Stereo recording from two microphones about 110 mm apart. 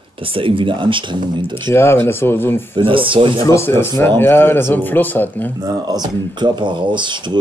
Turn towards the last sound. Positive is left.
turn(degrees=-45)  # may be behind; listen again after turning